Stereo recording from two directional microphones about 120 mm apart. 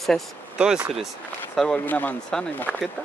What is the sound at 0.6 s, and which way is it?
Speech, 10° right (ahead or behind).